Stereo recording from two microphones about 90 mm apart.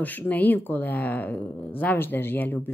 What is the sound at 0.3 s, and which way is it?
Speech, 20° left (ahead or behind).